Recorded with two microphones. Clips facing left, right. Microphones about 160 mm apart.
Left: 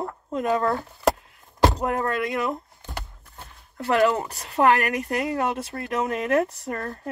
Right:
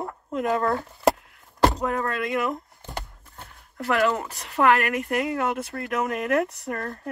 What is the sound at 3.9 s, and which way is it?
Speech, 25° left (ahead or behind).